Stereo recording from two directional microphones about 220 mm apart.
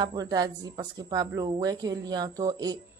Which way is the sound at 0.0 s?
15° right (ahead or behind).